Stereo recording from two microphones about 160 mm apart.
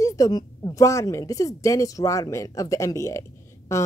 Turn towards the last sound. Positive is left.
turn(degrees=20)  # may be behind; listen again after turning